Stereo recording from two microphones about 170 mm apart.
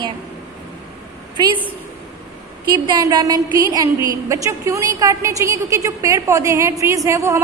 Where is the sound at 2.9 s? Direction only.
25° right (ahead or behind).